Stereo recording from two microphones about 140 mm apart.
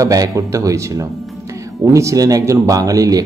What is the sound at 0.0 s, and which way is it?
Speech, 25° right (ahead or behind).